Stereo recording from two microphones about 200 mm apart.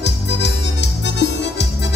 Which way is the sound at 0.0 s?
60° left (ahead or behind).